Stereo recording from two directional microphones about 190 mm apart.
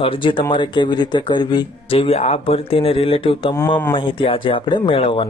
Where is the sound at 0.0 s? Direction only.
25° left (ahead or behind).